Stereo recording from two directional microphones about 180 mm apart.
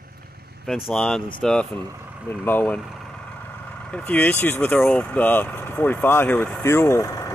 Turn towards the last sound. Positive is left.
turn(degrees=15)  # may be behind; listen again after turning